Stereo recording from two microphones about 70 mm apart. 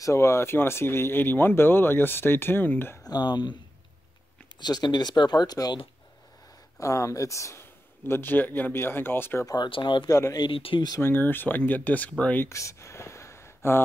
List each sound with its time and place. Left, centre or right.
0.0 s speech: left
3.1 s speech: left
4.6 s speech: left
6.8 s speech: left
8.1 s speech: left
9.5 s speech: left
10.0 s speech: left
10.3 s speech: left
11.0 s speech: left
12.4 s a sound: left